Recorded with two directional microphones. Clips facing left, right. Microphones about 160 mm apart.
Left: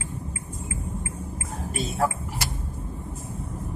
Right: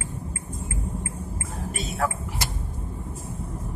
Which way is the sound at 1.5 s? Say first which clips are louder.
Left 3 dB; 35° left (ahead or behind).